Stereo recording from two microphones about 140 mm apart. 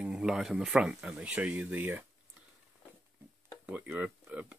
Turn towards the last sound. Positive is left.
turn(degrees=-10)  # may be behind; listen again after turning